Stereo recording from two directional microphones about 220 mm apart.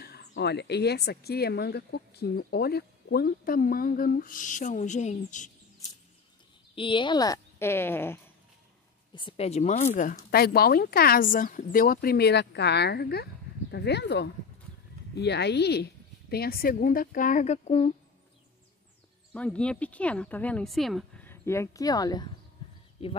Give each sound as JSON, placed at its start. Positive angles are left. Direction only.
{"t": 0.0, "sound": "a sound", "side_deg": 45}
{"t": 0.3, "sound": "speech", "side_deg": 50}
{"t": 6.7, "sound": "speech", "side_deg": 20}
{"t": 9.1, "sound": "a woman's voice", "side_deg": 25}
{"t": 19.3, "sound": "speech", "side_deg": 5}